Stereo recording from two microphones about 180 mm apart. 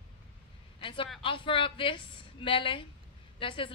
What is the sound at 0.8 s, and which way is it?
A woman's voice, 30° left (ahead or behind).